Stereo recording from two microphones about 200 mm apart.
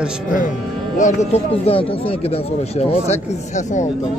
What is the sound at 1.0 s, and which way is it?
Speech, 30° left (ahead or behind).